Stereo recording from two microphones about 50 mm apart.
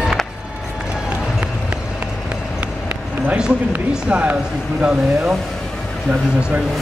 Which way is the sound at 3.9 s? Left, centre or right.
Centre.